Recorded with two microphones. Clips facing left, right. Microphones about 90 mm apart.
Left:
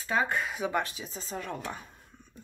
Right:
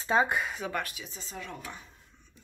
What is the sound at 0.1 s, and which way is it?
Speech, 25° right (ahead or behind).